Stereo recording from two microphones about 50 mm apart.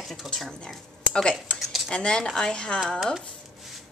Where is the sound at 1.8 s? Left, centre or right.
Centre.